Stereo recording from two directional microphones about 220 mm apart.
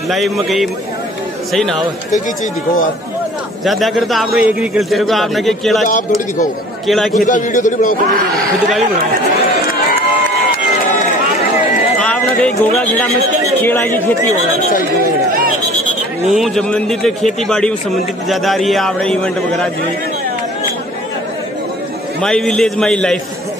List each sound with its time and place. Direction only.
0.1 s a man's voice: centre (ahead or behind)
3.6 s a man's voice: centre (ahead or behind)
6.9 s a man's voice: centre (ahead or behind)
7.2 s a man's voice: 35° left (ahead or behind)
12.0 s speech: 5° left (ahead or behind)
14.7 s a man's voice: 40° left (ahead or behind)
16.3 s a man's voice: centre (ahead or behind)
22.2 s a man's voice: 5° left (ahead or behind)